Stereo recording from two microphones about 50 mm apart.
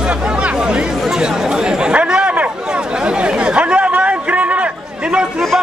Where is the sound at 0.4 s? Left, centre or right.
Centre.